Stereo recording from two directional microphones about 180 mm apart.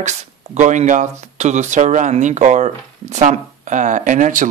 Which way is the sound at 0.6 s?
40° right (ahead or behind).